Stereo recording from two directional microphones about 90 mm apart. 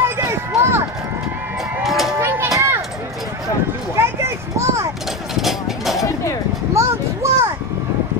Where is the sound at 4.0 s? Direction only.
30° right (ahead or behind).